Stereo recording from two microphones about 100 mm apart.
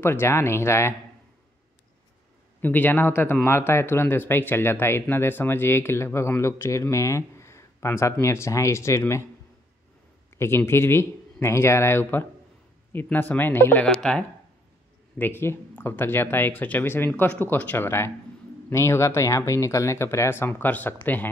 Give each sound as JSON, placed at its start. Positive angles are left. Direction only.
{"t": 0.0, "sound": "speech", "side_deg": 25}
{"t": 2.6, "sound": "speech", "side_deg": 20}
{"t": 10.3, "sound": "speech", "side_deg": 25}
{"t": 13.8, "sound": "speech", "side_deg": 5}
{"t": 15.1, "sound": "speech", "side_deg": 20}